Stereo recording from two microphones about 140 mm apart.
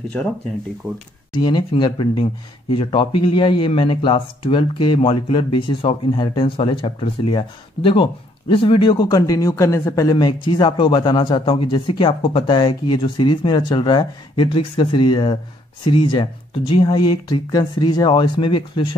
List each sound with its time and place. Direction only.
1.3 s speech: 35° left (ahead or behind)